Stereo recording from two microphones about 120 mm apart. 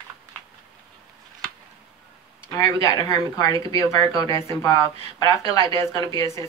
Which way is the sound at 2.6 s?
30° left (ahead or behind).